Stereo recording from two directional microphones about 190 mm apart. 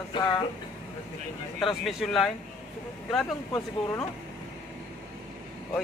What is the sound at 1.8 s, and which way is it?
Speech, centre (ahead or behind).